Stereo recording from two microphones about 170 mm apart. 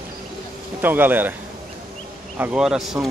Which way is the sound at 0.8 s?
10° right (ahead or behind).